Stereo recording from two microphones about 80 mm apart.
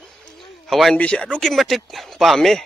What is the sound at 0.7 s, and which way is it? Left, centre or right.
Speech, centre.